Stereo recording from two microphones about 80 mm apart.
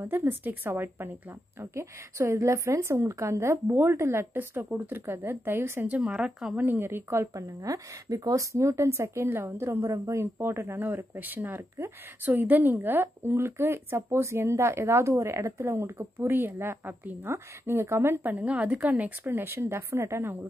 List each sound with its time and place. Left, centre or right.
0.0 s a woman's voice: right
6.6 s a woman's voice: right